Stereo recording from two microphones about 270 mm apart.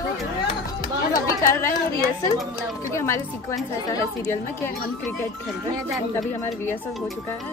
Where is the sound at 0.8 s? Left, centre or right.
Centre.